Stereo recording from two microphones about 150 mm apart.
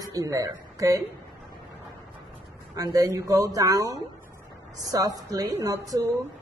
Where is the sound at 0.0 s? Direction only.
25° right (ahead or behind).